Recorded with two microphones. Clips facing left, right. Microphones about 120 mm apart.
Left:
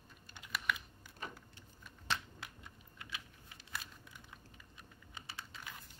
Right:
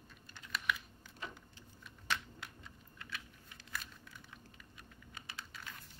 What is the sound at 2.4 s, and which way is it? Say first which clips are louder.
Typing: even; 10° left (ahead or behind).